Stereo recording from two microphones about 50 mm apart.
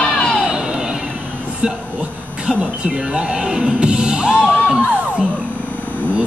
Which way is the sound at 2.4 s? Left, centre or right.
Centre.